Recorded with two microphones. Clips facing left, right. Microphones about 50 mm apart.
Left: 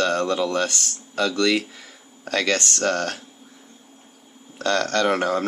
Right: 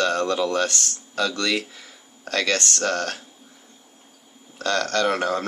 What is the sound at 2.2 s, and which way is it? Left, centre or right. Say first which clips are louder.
Speech: left 1 dB; centre.